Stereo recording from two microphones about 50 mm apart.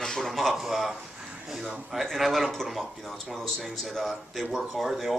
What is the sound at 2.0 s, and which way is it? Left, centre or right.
A man's voice, centre.